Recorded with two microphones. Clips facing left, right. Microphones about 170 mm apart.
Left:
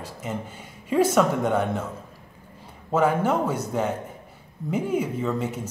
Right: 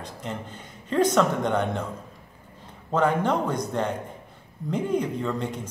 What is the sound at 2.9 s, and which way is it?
A man's voice, 5° left (ahead or behind).